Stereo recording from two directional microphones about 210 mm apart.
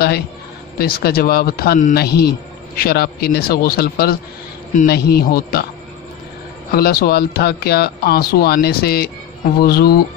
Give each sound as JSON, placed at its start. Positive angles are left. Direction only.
{"t": 0.7, "sound": "a man's voice", "side_deg": 45}
{"t": 6.7, "sound": "a man's voice", "side_deg": 45}